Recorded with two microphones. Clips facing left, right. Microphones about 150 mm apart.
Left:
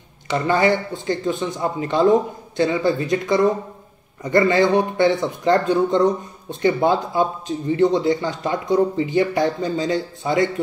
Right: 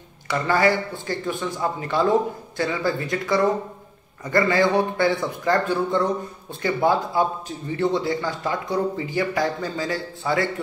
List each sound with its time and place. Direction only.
0.3 s speech: 20° left (ahead or behind)